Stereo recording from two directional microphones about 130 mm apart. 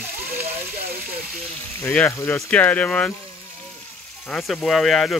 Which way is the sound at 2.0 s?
20° left (ahead or behind).